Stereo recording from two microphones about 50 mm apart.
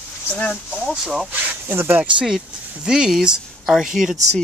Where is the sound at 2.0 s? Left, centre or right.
Right.